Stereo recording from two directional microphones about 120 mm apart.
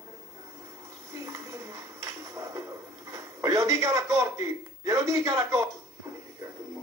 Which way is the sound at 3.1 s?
25° right (ahead or behind).